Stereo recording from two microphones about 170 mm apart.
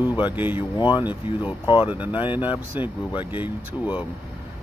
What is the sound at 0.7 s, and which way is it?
Speech, 25° left (ahead or behind).